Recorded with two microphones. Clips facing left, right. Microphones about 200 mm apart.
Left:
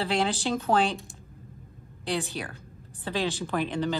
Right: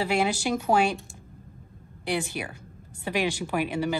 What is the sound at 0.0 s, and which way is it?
Speech, 10° right (ahead or behind).